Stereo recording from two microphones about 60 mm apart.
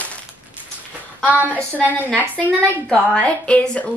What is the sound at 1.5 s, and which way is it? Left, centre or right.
Speech, left.